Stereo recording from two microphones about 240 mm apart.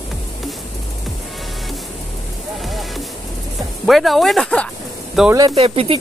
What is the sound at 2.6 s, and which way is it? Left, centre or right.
Music, centre.